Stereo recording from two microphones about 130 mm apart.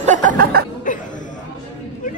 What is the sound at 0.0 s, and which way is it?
Chuckle, 70° right (ahead or behind).